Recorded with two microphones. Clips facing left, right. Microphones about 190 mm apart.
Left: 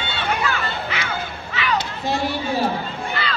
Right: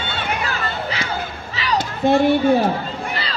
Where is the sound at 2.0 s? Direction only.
55° right (ahead or behind).